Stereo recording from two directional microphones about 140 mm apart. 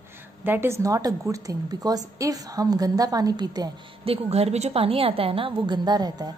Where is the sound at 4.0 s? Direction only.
45° right (ahead or behind); by 6.3 s 30° right (ahead or behind).